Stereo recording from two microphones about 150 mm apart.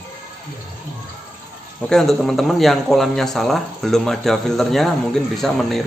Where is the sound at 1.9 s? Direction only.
5° left (ahead or behind).